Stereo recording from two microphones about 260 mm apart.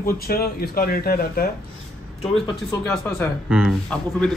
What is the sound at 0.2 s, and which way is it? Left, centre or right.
Speech, left.